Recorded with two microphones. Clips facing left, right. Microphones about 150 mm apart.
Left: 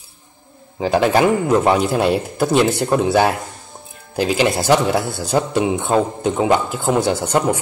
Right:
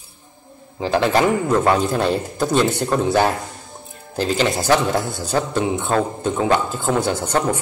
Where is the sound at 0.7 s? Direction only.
15° left (ahead or behind).